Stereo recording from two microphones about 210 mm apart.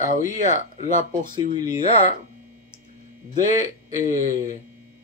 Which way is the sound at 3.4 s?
30° left (ahead or behind).